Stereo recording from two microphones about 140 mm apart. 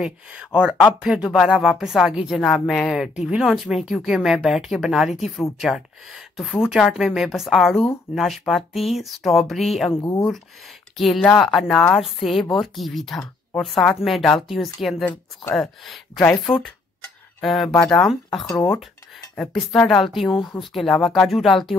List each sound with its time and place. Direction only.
0.0 s a woman's voice: 5° right (ahead or behind)
9.9 s speech: 20° left (ahead or behind)
11.0 s a woman's voice: 5° left (ahead or behind)
17.4 s a woman's voice: centre (ahead or behind)
19.6 s a woman's voice: 5° left (ahead or behind)